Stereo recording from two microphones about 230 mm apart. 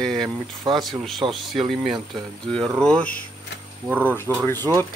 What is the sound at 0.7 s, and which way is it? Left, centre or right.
Speech, centre.